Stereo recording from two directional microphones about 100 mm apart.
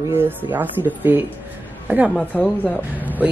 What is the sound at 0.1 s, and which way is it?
Speech, 20° right (ahead or behind).